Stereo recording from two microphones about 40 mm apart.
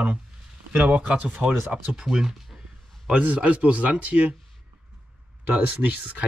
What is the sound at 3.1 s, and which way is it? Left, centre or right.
Speech, right.